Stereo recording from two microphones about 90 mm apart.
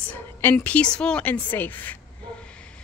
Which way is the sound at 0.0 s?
15° left (ahead or behind).